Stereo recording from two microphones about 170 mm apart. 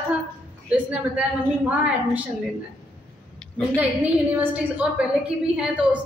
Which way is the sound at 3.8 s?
10° right (ahead or behind).